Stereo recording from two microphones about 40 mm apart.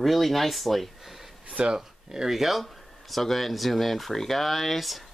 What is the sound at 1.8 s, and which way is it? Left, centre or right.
Speech, centre.